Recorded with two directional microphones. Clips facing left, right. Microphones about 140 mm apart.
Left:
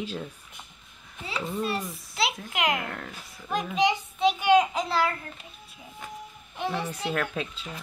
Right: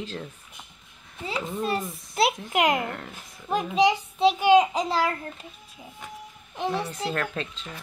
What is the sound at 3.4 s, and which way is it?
Speech, 20° right (ahead or behind).